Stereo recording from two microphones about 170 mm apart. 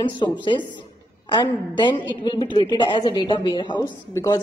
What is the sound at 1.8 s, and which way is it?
A woman's voice, 30° left (ahead or behind).